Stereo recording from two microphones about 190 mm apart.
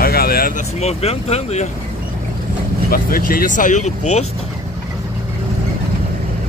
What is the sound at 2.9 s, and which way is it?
Speech, 50° left (ahead or behind).